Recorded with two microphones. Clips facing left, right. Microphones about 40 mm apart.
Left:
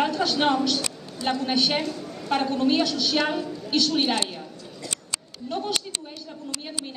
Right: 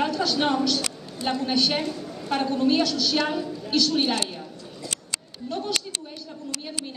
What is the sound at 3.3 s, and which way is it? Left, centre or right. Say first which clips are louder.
Speech: even; centre.